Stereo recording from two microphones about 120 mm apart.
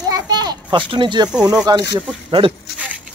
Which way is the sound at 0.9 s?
40° right (ahead or behind).